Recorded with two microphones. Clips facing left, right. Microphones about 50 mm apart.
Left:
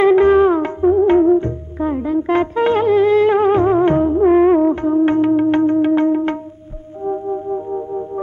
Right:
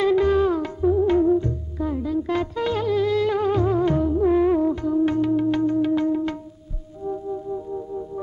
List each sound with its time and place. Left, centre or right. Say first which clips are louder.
0.0 s music: left 8 dB; left